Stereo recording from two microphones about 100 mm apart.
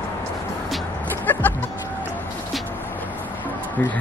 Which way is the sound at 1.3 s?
20° left (ahead or behind).